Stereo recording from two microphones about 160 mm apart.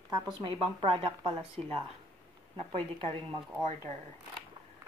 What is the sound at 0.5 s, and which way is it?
Speech, 30° right (ahead or behind).